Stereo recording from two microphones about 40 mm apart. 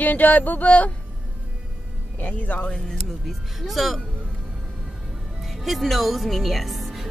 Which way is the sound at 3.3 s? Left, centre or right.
Centre.